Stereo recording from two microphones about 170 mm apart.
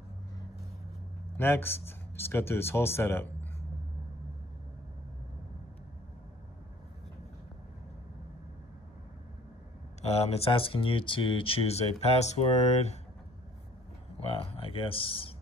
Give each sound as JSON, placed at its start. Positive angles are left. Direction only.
{"t": 1.3, "sound": "speech", "side_deg": 15}
{"t": 10.0, "sound": "speech", "side_deg": 40}
{"t": 14.3, "sound": "speech", "side_deg": 35}